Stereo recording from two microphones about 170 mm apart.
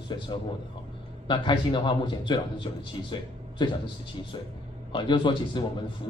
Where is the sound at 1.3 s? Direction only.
25° left (ahead or behind).